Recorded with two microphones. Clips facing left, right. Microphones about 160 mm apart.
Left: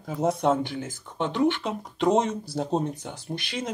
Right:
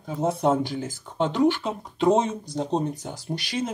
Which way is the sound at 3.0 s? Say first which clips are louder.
Right 2 dB; 35° right (ahead or behind).